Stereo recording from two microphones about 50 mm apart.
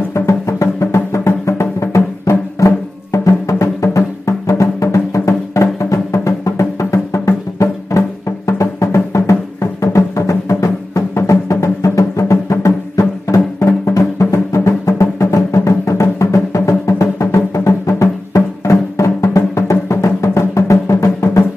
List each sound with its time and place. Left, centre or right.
0.1 s music: left